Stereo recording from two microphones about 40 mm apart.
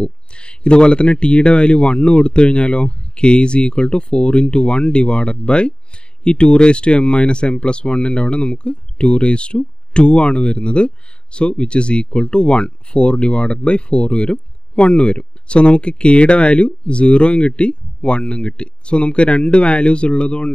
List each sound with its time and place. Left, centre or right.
0.0 s speech: left